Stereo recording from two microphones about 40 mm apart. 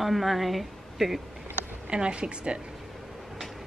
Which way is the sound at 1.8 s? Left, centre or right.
Right.